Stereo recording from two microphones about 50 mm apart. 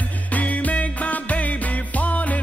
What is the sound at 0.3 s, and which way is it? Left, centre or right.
Music, left.